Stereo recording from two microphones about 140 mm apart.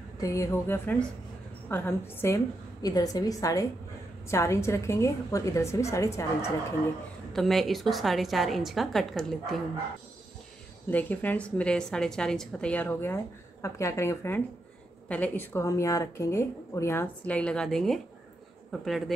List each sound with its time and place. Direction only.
0.2 s a woman's voice: 20° left (ahead or behind)
7.3 s a woman's voice: centre (ahead or behind)
10.9 s a woman's voice: 10° left (ahead or behind)